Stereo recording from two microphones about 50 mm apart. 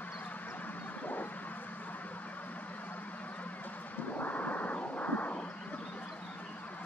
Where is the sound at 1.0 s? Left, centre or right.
Left.